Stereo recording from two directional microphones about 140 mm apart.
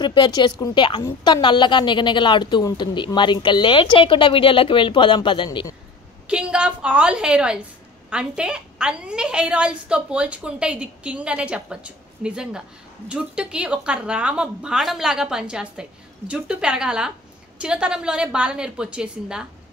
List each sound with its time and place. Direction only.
0.0 s a woman's voice: 35° left (ahead or behind)
6.2 s a woman's voice: 10° right (ahead or behind)